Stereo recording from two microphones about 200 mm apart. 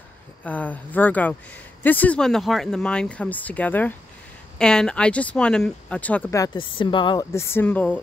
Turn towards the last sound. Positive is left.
turn(degrees=10)  # may be behind; listen again after turning